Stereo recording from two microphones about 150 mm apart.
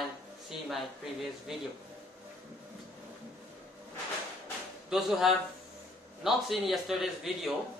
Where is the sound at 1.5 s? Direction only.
5° right (ahead or behind).